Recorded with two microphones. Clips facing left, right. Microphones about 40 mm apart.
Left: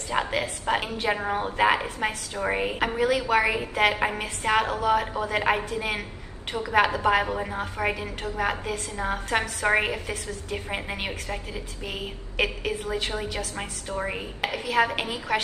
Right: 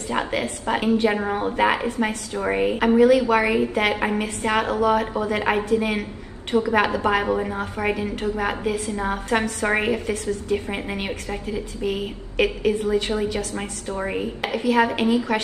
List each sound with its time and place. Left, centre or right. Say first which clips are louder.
0.1 s a woman's voice: right 2 dB; centre